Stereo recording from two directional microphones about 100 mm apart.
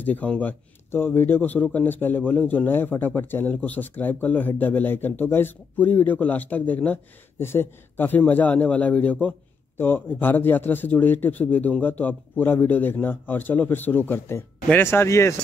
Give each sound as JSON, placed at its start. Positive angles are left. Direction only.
{"t": 0.0, "sound": "speech", "side_deg": 15}